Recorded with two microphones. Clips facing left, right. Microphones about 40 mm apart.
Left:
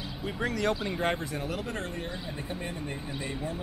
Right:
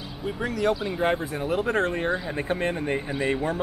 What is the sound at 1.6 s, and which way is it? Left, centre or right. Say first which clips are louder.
Speech: right 11 dB; right.